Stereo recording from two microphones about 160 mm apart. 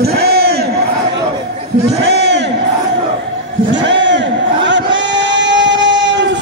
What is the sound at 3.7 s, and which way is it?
Crowd, 90° right.